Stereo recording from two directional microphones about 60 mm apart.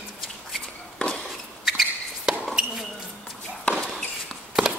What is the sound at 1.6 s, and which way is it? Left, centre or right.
Chop, centre.